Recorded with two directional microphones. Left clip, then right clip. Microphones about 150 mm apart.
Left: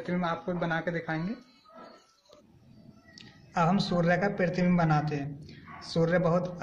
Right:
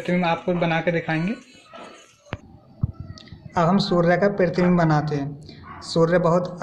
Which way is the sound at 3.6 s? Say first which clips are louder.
Right 8 dB; 40° right (ahead or behind).